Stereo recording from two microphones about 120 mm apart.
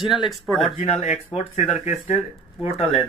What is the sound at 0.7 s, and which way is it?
Speech, 70° left (ahead or behind).